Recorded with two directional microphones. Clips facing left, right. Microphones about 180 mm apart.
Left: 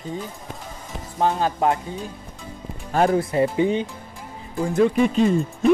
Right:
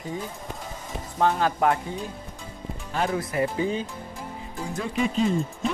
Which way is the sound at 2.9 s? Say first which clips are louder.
Left 8 dB; 45° left (ahead or behind).